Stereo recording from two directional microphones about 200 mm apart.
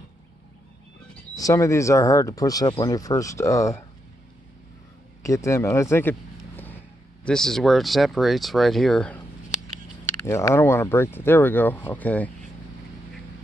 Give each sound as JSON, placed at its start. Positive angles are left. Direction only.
{"t": 1.3, "sound": "speech", "side_deg": 15}
{"t": 5.2, "sound": "speech", "side_deg": 15}
{"t": 10.2, "sound": "speech", "side_deg": 15}